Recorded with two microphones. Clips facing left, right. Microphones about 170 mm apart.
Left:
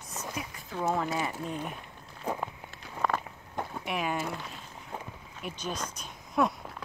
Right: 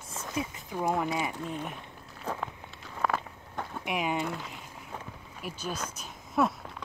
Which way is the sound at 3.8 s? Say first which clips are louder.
Right 2 dB; 15° right (ahead or behind).